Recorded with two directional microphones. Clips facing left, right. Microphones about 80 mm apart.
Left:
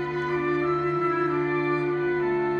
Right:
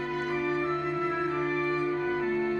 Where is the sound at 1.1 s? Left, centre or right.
Left.